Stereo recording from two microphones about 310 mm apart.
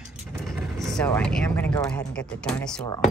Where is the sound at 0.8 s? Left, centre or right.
Centre.